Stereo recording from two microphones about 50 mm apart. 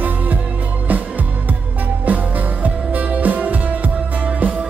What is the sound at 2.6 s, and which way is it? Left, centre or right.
Music, right.